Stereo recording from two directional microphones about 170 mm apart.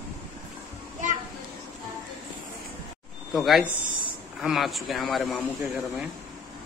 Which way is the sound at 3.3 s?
Centre (ahead or behind).